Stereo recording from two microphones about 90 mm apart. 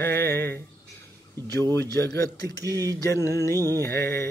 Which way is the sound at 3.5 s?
40° right (ahead or behind).